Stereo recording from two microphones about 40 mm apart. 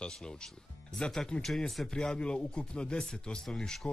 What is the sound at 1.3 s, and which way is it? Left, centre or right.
Speech, left.